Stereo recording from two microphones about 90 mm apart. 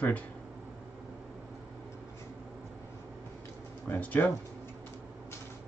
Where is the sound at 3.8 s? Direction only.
20° left (ahead or behind).